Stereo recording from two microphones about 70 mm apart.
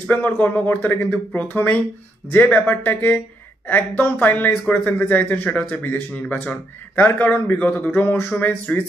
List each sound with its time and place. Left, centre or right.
0.0 s speech: left